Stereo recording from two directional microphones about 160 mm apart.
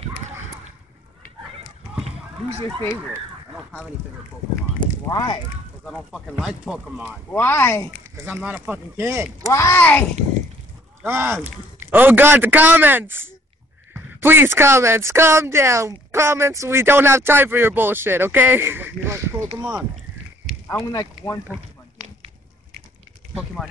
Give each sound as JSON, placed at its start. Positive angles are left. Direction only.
{"t": 5.0, "sound": "speech", "side_deg": 25}
{"t": 6.4, "sound": "speech", "side_deg": -5}
{"t": 7.3, "sound": "speech", "side_deg": 15}
{"t": 8.5, "sound": "a woman's voice", "side_deg": -10}
{"t": 9.5, "sound": "speech", "side_deg": 15}
{"t": 11.0, "sound": "a woman's voice", "side_deg": -15}
{"t": 20.6, "sound": "speech", "side_deg": 20}